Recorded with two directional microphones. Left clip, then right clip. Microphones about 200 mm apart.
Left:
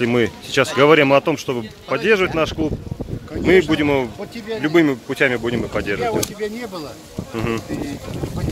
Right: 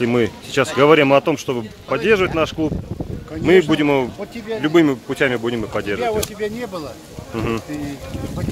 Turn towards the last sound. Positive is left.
turn(degrees=0)  # may be behind; listen again after turning